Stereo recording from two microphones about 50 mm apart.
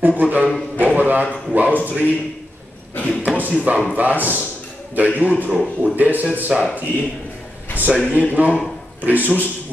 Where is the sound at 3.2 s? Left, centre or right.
Right.